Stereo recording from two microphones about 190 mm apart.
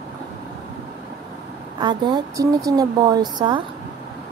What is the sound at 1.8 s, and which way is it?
Speech, 25° right (ahead or behind).